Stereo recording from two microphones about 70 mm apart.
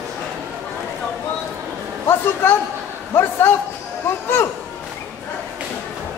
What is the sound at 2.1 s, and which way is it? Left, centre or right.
A man's voice, left.